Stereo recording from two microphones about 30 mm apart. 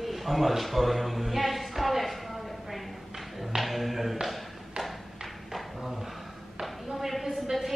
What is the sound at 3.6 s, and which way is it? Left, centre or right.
Tap, centre.